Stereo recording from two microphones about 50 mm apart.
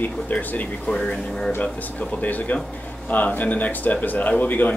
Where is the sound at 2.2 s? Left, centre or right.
Left.